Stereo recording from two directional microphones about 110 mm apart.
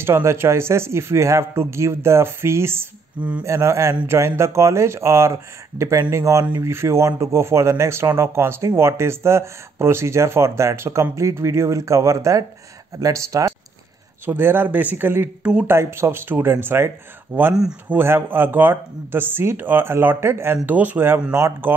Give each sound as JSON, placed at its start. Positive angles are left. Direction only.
{"t": 0.0, "sound": "speech", "side_deg": -25}
{"t": 3.4, "sound": "speech", "side_deg": -25}
{"t": 17.6, "sound": "speech", "side_deg": -5}
{"t": 17.9, "sound": "speech", "side_deg": -20}